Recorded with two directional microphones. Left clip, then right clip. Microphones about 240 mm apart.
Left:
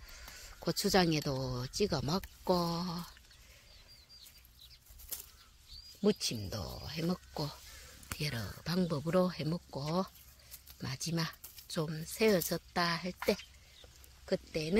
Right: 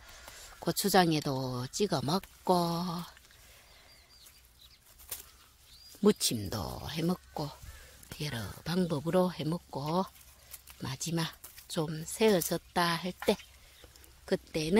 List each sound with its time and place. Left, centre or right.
0.1 s speech: centre
6.2 s speech: right
8.2 s speech: centre
14.2 s speech: right